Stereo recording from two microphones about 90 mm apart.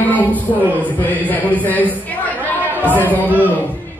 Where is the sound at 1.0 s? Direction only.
20° left (ahead or behind).